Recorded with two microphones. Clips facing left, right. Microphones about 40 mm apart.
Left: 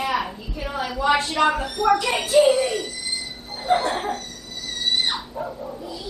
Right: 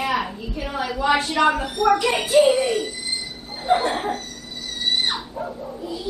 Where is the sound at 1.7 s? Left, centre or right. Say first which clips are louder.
Right 1 dB; right.